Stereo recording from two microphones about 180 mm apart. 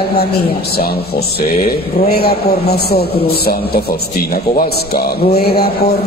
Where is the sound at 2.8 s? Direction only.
60° left (ahead or behind).